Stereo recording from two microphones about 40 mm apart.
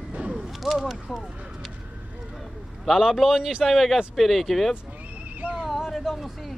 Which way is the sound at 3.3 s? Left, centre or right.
Centre.